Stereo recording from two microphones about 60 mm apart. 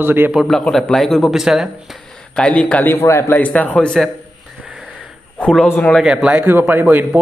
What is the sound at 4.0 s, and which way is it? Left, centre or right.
Speech, centre.